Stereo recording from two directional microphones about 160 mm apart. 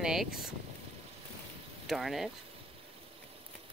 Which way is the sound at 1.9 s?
Centre (ahead or behind).